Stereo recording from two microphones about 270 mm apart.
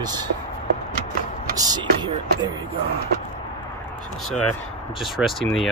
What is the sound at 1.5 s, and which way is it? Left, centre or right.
Speech, centre.